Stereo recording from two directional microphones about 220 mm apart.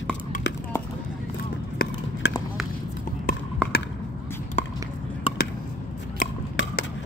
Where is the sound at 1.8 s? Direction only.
40° left (ahead or behind).